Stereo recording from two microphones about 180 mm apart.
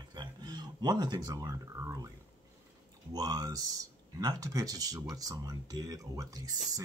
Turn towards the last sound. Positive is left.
turn(degrees=-20)  # may be behind; listen again after turning